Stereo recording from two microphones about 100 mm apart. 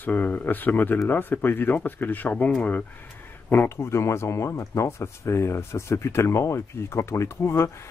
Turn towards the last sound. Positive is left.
turn(degrees=25)  # may be behind; listen again after turning